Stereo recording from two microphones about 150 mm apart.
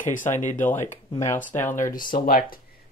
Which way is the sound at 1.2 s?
15° left (ahead or behind).